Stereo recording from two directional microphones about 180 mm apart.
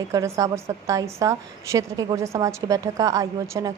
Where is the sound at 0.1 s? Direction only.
15° right (ahead or behind).